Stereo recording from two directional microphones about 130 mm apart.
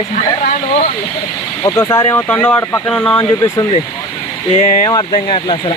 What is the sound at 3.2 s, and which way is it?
Speech, 25° left (ahead or behind).